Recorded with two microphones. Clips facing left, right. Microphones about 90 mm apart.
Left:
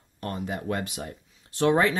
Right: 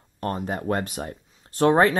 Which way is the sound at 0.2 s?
40° right (ahead or behind).